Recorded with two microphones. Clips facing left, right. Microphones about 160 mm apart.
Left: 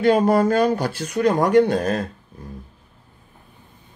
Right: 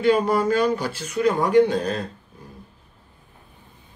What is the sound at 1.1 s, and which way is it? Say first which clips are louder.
Speech: left 1 dB; 40° left (ahead or behind).